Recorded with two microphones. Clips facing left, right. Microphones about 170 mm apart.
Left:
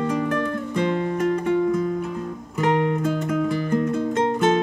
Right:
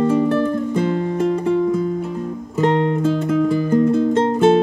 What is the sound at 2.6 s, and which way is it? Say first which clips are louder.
Music: right 4 dB; 30° right (ahead or behind).